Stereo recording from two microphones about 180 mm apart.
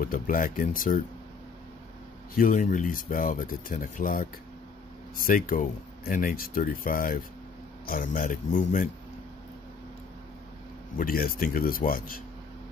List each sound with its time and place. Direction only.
0.0 s speech: 50° left (ahead or behind)
2.3 s speech: 45° left (ahead or behind)
11.0 s speech: 55° left (ahead or behind)